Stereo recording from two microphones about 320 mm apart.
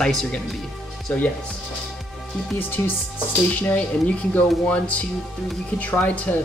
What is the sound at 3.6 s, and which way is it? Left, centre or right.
Speech, centre.